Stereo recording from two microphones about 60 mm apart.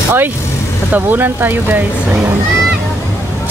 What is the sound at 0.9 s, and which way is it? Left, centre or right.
Speech, right.